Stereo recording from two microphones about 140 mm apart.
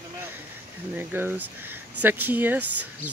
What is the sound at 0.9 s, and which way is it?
Speech, 15° right (ahead or behind).